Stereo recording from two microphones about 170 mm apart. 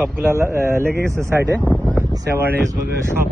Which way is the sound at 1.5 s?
5° left (ahead or behind).